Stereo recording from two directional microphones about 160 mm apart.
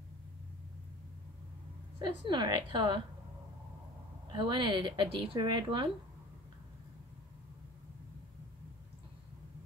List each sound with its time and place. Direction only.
2.0 s speech: 30° right (ahead or behind)
4.3 s speech: 30° right (ahead or behind)